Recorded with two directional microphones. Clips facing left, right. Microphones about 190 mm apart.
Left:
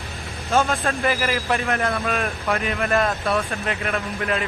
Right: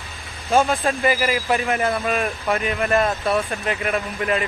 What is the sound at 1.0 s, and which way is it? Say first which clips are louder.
Speech: right 2 dB; 5° right (ahead or behind).